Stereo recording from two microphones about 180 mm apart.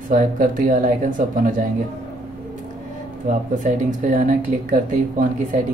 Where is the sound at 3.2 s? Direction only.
45° right (ahead or behind).